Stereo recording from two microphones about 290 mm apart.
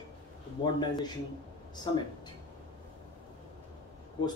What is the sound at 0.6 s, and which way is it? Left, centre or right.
Speech, centre.